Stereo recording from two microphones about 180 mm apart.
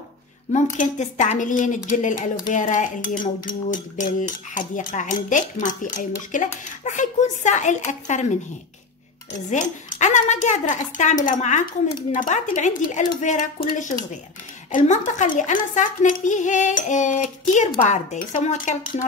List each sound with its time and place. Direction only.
0.7 s speech: 45° left (ahead or behind)
9.5 s speech: 40° left (ahead or behind)